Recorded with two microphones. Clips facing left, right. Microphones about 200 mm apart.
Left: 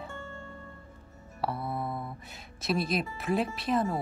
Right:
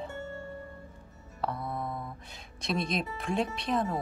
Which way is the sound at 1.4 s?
5° left (ahead or behind).